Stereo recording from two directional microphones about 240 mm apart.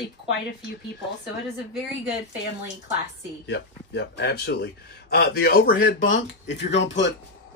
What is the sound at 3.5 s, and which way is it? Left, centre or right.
A man's voice, left.